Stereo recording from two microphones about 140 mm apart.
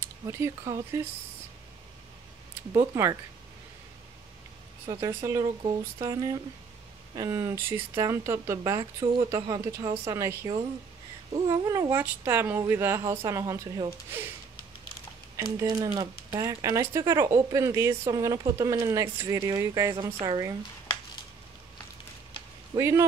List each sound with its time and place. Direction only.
0.0 s speech: 20° right (ahead or behind)
2.7 s speech: 20° right (ahead or behind)
4.8 s speech: 25° right (ahead or behind)
11.9 s a woman's voice: 15° right (ahead or behind)
15.3 s speech: 25° right (ahead or behind)
22.8 s speech: 20° right (ahead or behind)